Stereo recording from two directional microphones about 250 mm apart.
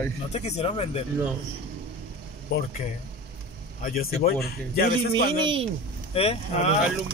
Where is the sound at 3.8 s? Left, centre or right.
Left.